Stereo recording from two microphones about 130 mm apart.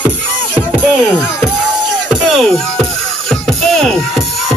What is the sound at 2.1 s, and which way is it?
Music, centre (ahead or behind).